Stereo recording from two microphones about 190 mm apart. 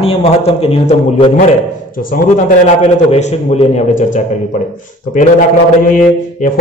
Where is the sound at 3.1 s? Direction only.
35° left (ahead or behind).